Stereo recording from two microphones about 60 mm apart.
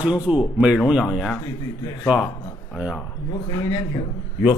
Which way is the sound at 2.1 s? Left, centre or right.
Centre.